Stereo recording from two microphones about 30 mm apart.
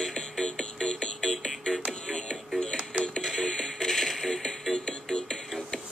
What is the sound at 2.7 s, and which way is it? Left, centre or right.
Music, right.